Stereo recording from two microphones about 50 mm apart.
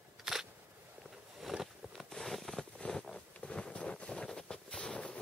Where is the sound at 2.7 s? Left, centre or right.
Centre.